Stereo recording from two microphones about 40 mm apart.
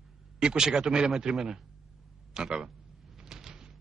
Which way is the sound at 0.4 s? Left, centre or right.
Centre.